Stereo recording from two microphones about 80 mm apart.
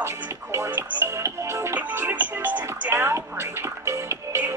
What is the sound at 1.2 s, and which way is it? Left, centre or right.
Music, right.